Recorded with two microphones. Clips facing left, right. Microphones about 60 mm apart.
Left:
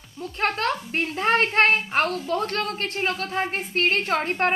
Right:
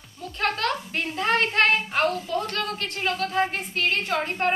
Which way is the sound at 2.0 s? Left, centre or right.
Left.